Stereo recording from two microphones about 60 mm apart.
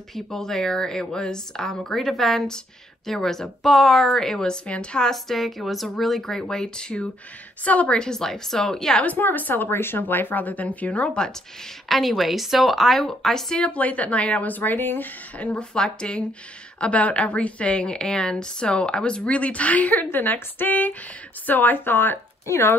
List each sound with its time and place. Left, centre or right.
0.1 s a woman's voice: centre
5.1 s a woman's voice: centre
9.0 s speech: left
11.9 s speech: centre
13.6 s a woman's voice: left
15.3 s a woman's voice: centre; by 22.2 s left
22.5 s speech: left